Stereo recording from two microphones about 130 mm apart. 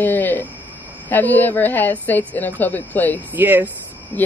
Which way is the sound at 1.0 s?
15° left (ahead or behind).